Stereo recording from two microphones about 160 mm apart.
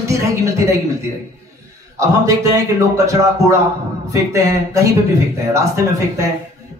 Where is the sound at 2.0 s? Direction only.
20° right (ahead or behind).